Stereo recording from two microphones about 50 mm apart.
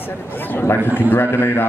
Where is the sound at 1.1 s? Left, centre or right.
Left.